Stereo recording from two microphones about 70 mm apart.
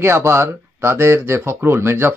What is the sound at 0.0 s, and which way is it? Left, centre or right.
Speech, right.